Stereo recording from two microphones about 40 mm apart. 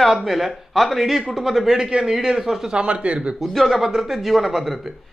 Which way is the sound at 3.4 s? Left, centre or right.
Centre.